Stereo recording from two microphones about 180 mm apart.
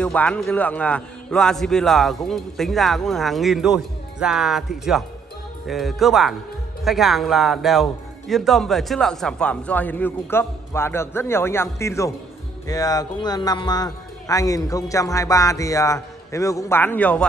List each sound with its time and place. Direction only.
0.0 s speech: 10° left (ahead or behind)